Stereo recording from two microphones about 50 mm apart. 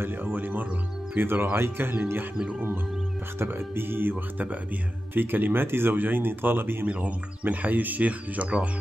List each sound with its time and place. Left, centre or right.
0.0 s speech: right
3.3 s speech: right
6.9 s speech: right